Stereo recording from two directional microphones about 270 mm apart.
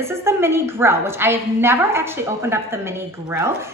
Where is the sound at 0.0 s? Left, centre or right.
Centre.